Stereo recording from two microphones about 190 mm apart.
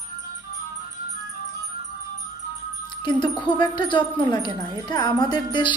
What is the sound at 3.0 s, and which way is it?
Speech, 25° left (ahead or behind).